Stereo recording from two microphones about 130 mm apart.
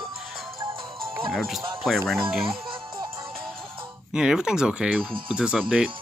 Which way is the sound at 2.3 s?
Centre (ahead or behind).